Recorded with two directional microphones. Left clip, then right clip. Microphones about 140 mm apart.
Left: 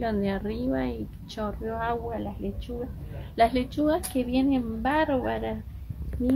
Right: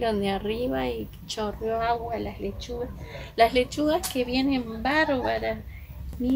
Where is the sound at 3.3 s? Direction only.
5° right (ahead or behind).